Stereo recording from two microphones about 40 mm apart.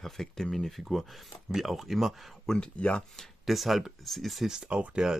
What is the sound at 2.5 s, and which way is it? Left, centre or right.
Speech, left.